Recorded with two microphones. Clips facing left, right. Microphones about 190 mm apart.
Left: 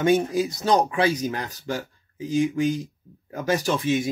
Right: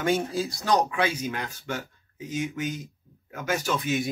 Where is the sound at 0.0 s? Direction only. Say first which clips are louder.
Left 5 dB; 20° left (ahead or behind).